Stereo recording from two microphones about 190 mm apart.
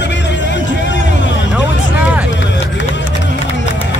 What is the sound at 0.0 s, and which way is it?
Vehicle, 65° left (ahead or behind).